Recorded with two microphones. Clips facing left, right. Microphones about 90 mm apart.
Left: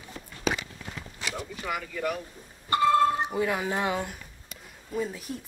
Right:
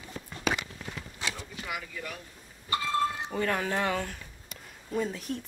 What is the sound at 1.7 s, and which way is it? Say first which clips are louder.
Speech: left 8 dB; 50° left (ahead or behind).